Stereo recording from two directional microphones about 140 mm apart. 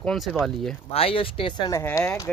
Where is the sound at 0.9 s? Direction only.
45° left (ahead or behind).